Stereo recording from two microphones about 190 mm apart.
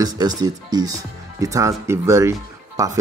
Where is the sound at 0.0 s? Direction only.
20° right (ahead or behind).